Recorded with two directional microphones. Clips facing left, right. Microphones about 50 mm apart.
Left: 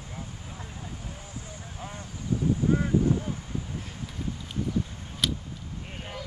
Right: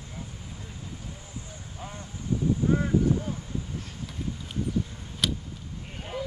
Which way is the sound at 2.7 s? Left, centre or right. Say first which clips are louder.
Even; centre.